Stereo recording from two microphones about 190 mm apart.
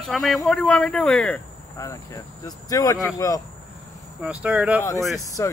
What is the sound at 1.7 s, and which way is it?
Speech, 15° left (ahead or behind).